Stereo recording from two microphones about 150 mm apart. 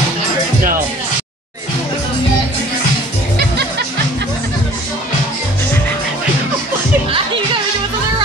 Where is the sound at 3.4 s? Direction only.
90° right.